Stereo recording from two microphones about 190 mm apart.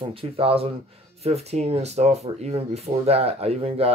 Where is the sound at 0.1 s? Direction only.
30° right (ahead or behind).